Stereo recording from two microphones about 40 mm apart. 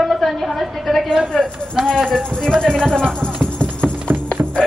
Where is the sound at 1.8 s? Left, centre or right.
Right.